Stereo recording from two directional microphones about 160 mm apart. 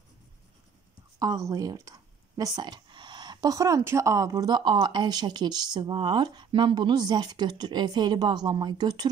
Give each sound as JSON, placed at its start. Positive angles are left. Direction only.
{"t": 1.2, "sound": "speech", "side_deg": -20}